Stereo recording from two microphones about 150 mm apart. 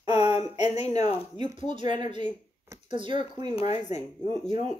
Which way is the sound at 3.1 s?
45° left (ahead or behind).